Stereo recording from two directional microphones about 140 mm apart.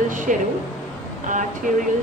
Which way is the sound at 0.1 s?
70° right (ahead or behind).